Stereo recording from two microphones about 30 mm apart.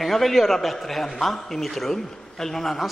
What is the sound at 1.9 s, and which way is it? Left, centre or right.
Speech, centre.